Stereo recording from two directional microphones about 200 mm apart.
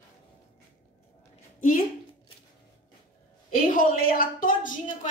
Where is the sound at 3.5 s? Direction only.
45° left (ahead or behind).